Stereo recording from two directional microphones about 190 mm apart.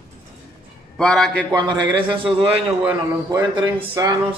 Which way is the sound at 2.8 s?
10° right (ahead or behind).